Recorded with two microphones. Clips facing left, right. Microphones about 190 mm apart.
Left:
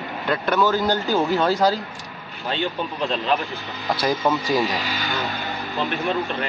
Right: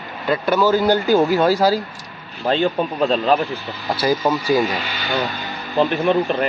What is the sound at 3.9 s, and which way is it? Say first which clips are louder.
Speech: right 3 dB; centre (ahead or behind).